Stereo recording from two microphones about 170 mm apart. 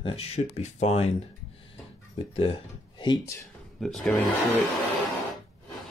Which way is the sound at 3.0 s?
25° left (ahead or behind).